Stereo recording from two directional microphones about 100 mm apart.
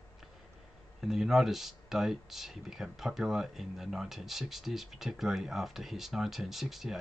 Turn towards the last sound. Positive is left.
turn(degrees=0)  # may be behind; listen again after turning